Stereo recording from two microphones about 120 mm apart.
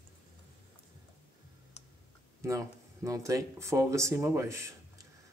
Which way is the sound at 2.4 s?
25° right (ahead or behind).